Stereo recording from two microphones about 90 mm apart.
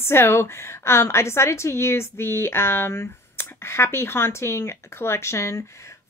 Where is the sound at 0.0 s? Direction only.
30° left (ahead or behind).